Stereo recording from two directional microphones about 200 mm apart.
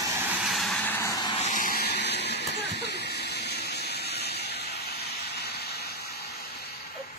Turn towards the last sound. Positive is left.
turn(degrees=50)  # may be behind; listen again after turning